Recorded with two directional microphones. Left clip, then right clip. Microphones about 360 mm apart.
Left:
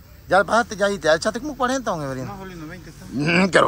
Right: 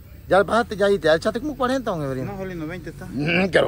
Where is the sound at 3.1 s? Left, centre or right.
Centre.